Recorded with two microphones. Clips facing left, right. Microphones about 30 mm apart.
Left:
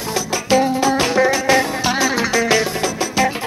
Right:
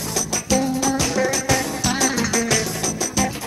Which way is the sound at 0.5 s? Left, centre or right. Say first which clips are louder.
Left 5 dB; left.